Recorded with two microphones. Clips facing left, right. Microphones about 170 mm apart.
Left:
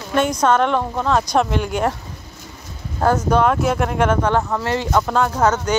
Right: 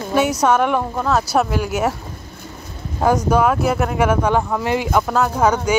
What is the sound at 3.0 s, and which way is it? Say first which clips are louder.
Speech: right 1 dB; 10° right (ahead or behind).